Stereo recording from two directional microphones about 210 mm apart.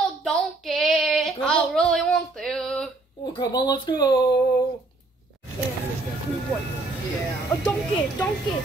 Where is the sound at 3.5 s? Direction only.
20° left (ahead or behind).